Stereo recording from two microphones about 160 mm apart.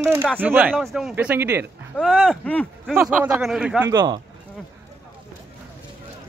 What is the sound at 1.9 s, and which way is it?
Speech, 5° left (ahead or behind).